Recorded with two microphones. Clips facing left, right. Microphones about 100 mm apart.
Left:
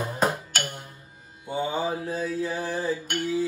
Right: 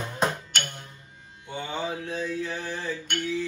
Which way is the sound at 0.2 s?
5° left (ahead or behind).